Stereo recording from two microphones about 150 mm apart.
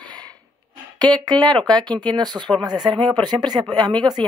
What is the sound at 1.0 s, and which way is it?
Speech, 25° right (ahead or behind).